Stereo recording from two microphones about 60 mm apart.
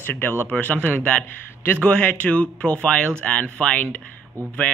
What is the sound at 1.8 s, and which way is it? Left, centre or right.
Speech, centre.